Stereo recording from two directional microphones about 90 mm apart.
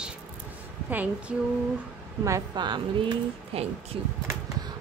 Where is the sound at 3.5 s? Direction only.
90° right.